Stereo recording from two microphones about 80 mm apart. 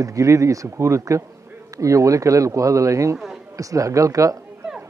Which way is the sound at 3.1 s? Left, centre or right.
Centre.